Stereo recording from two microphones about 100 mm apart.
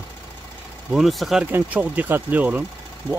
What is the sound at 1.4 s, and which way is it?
Speech, 15° right (ahead or behind).